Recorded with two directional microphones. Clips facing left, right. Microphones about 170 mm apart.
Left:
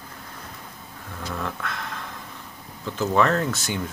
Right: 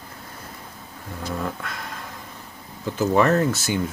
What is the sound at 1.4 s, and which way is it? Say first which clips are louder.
Speech: left 1 dB; 10° right (ahead or behind).